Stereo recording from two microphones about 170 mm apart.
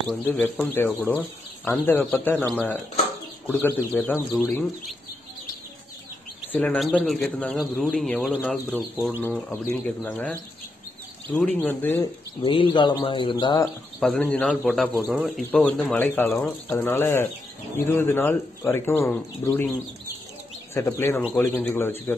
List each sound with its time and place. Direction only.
0.1 s speech: 5° left (ahead or behind)
6.5 s speech: 10° left (ahead or behind)
8.9 s speech: 5° right (ahead or behind)
9.5 s speech: 10° left (ahead or behind)
11.3 s speech: 10° left (ahead or behind)
12.0 s speech: 30° left (ahead or behind)
13.9 s speech: 5° left (ahead or behind)
20.7 s speech: 15° left (ahead or behind)